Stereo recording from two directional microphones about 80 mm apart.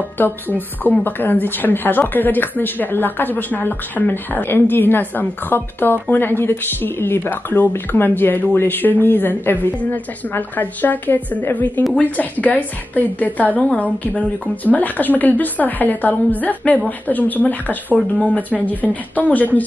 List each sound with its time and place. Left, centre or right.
0.2 s a woman's voice: left